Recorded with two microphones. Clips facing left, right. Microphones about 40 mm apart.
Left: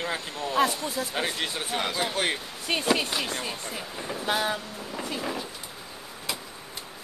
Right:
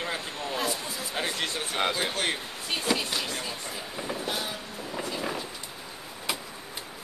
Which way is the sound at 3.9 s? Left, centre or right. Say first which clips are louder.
Right 3 dB; centre.